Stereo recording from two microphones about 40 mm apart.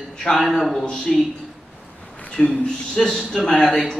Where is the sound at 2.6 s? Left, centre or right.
Centre.